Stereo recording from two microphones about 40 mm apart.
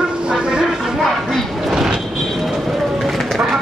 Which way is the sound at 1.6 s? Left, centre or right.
Centre.